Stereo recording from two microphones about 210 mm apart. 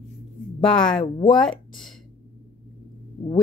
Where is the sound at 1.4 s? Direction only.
Centre (ahead or behind).